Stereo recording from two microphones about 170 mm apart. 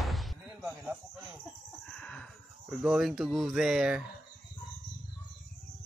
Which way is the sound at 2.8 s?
Centre (ahead or behind).